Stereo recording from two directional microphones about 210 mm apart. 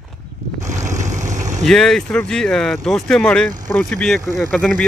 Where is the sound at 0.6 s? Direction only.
35° right (ahead or behind).